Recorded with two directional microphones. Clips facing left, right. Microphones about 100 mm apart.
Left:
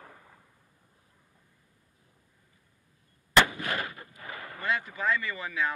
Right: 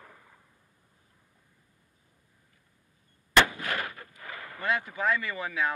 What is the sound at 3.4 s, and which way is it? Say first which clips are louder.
Artillery fire: even; 15° left (ahead or behind).